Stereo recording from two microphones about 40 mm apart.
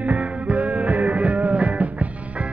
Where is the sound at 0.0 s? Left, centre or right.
Right.